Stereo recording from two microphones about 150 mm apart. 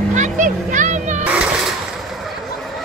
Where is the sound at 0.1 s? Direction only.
55° right (ahead or behind).